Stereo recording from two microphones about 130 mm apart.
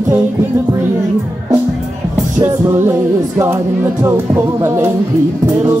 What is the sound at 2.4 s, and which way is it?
Music, 20° right (ahead or behind).